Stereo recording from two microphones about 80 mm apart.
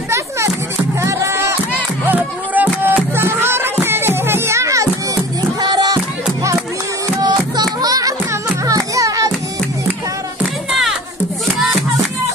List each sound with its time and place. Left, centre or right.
0.9 s music: right
2.0 s music: right
5.6 s music: right
7.2 s music: right